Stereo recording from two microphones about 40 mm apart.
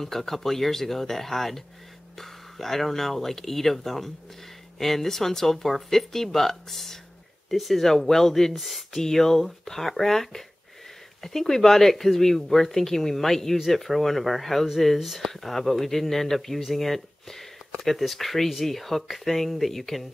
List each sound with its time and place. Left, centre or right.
0.0 s speech: centre